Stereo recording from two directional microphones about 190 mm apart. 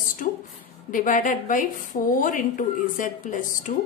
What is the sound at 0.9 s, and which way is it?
A woman's voice, 45° left (ahead or behind).